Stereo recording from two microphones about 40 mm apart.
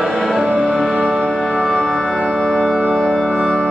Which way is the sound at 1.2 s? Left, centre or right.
Centre.